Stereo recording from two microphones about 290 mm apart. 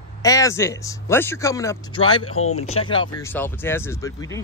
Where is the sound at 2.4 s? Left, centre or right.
Left.